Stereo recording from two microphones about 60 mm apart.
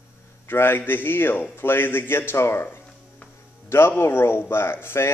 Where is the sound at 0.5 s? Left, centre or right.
Left.